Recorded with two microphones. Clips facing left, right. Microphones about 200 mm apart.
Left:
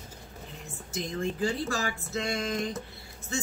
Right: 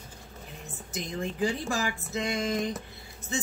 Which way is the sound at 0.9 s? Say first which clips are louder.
Left 2 dB; 15° right (ahead or behind).